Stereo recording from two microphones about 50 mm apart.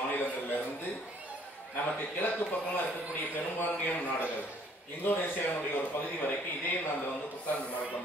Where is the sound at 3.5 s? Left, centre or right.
Left.